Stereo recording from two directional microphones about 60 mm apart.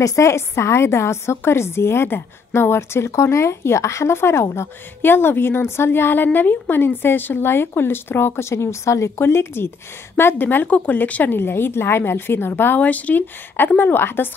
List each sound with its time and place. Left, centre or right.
0.0 s a woman's voice: left
5.0 s a woman's voice: left
9.2 s a woman's voice: left
11.3 s a woman's voice: left